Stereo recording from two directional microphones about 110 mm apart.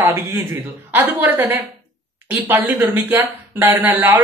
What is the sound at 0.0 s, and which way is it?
A man's voice, 20° right (ahead or behind).